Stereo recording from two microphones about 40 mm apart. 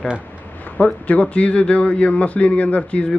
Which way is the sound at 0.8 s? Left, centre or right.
Left.